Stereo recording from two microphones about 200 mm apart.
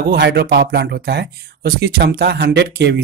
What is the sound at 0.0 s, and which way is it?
Speech, 55° right (ahead or behind).